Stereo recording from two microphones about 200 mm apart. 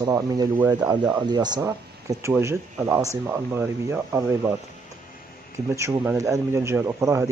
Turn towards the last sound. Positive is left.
turn(degrees=-15)  # may be behind; listen again after turning